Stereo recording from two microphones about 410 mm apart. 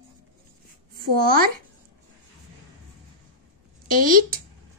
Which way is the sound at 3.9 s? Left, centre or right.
Right.